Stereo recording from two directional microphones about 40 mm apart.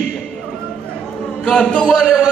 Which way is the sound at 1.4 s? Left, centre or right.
Left.